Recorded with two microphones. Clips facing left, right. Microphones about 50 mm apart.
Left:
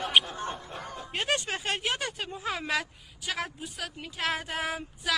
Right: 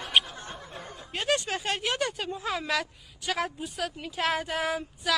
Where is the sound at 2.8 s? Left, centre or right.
Centre.